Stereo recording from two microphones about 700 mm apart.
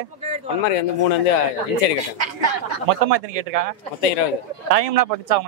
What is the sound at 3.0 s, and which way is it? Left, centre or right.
Speech, right.